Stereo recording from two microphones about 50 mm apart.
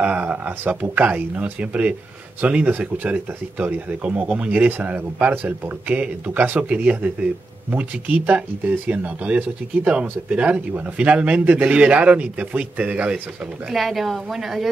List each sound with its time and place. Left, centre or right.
0.0 s speech: right
13.7 s speech: centre